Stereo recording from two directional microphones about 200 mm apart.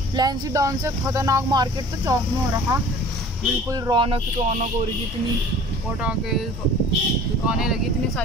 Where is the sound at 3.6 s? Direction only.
20° right (ahead or behind).